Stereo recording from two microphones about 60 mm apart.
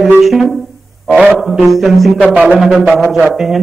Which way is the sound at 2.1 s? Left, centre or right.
Right.